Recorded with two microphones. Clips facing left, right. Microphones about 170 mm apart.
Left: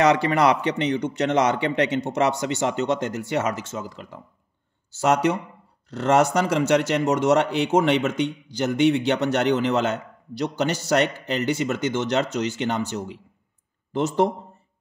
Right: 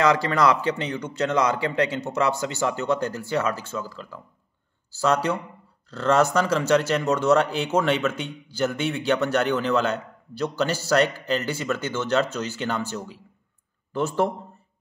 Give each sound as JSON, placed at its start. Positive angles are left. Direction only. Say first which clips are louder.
{"t": 0.0, "sound": "a man's voice", "louder": "left 2 dB", "side_deg": 20}